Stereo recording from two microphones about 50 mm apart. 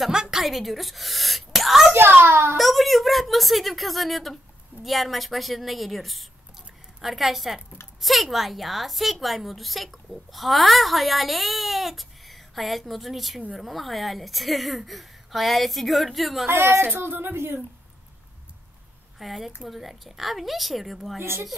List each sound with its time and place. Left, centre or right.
0.1 s a sound: centre
0.4 s a woman's voice: centre
2.0 s a sound: right
2.5 s a woman's voice: centre
16.4 s speech: right
19.1 s a woman's voice: centre
21.2 s speech: right